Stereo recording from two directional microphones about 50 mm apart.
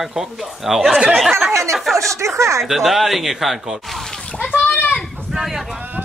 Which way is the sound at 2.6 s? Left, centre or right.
Centre.